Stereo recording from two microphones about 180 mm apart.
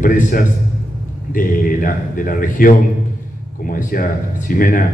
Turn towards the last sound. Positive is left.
turn(degrees=50)  # may be behind; listen again after turning